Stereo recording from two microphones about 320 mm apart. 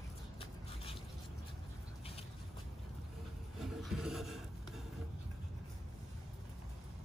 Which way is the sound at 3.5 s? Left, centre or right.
Centre.